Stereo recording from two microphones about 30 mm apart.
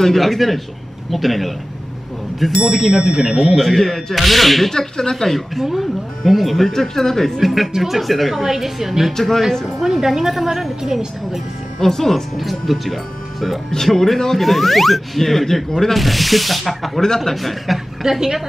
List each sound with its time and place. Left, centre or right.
0.1 s speech: centre
2.6 s a woman's voice: centre
3.5 s speech: centre
4.7 s speech: left
5.3 s speech: centre
6.7 s speech: centre
7.3 s speech: centre
7.7 s a woman's voice: centre
8.0 s a woman's voice: centre
9.1 s speech: centre
9.9 s a woman's voice: centre
11.8 s speech: centre
12.4 s speech: centre
18.0 s a woman's voice: right